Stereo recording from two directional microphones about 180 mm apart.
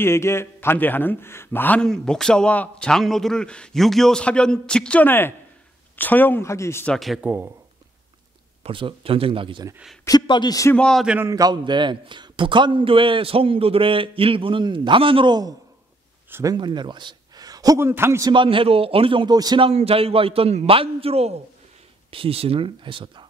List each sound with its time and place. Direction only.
0.0 s a man's voice: 15° left (ahead or behind)
7.0 s speech: 5° right (ahead or behind)
8.6 s a man's voice: 30° right (ahead or behind)
10.0 s a man's voice: 25° left (ahead or behind)
10.8 s a man's voice: centre (ahead or behind)
11.1 s a man's voice: 20° right (ahead or behind)
16.3 s speech: 15° right (ahead or behind)
16.5 s a man's voice: 25° right (ahead or behind)
18.3 s a man's voice: 30° right (ahead or behind)
19.7 s a man's voice: 35° right (ahead or behind)